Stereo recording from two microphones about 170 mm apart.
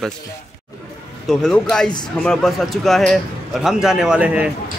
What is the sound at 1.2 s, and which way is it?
A man's voice, centre (ahead or behind).